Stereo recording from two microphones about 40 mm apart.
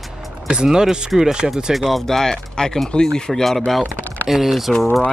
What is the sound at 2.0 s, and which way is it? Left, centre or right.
Speech, centre.